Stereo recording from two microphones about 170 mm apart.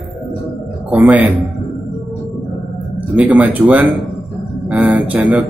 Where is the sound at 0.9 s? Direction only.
10° right (ahead or behind).